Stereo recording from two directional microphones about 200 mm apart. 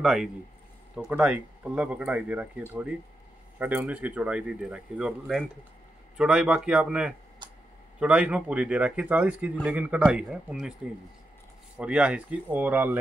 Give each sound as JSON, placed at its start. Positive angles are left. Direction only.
{"t": 0.0, "sound": "speech", "side_deg": -5}
{"t": 7.4, "sound": "a sound", "side_deg": -20}
{"t": 8.0, "sound": "speech", "side_deg": -5}
{"t": 11.7, "sound": "speech", "side_deg": -5}